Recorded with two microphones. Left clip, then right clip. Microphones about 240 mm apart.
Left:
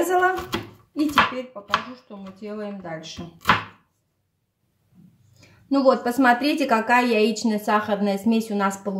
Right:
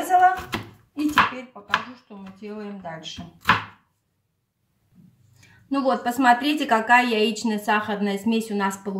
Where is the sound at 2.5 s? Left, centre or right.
Centre.